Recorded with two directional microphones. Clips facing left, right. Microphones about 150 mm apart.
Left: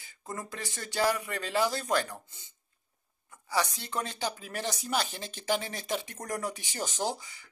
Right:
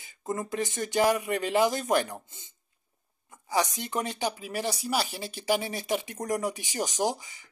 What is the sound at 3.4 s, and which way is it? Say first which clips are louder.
Speech: right 3 dB; 15° right (ahead or behind).